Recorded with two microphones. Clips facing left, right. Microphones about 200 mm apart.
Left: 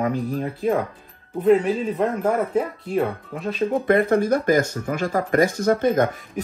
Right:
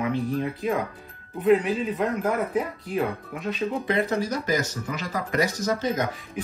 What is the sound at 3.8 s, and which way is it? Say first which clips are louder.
Speech: left 8 dB; 55° left (ahead or behind).